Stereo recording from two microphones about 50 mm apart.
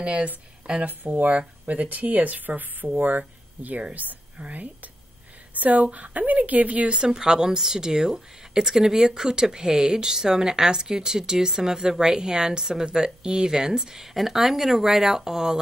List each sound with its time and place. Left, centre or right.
0.0 s speech: right
6.9 s speech: centre